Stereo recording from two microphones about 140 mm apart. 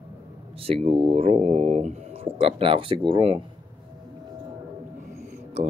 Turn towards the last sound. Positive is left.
turn(degrees=-45)  # may be behind; listen again after turning